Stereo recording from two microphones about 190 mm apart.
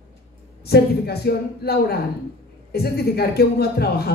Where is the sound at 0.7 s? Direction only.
55° left (ahead or behind).